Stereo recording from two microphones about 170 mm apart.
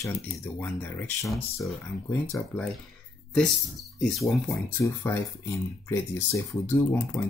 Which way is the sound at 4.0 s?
5° left (ahead or behind).